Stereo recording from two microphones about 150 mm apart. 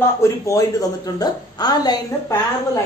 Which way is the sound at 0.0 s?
20° left (ahead or behind).